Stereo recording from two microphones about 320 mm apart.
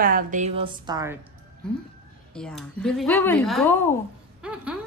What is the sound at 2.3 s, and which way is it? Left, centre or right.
A woman's voice, centre.